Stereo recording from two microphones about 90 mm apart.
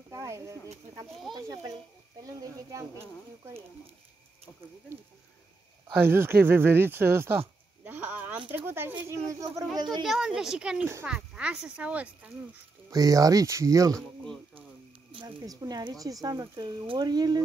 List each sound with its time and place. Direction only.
0.1 s speech: 35° right (ahead or behind)
1.3 s a child's voice: centre (ahead or behind)
2.7 s speech: 35° right (ahead or behind)
5.9 s speech: 25° right (ahead or behind)
9.3 s speech: 40° right (ahead or behind)
10.0 s speech: 5° right (ahead or behind)
12.9 s speech: 40° right (ahead or behind)
13.9 s speech: 10° left (ahead or behind)
15.4 s speech: 45° right (ahead or behind)
16.8 s speech: 65° right (ahead or behind)
17.1 s speech: 50° right (ahead or behind)